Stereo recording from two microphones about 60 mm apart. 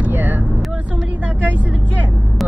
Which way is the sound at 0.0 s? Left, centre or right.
Right.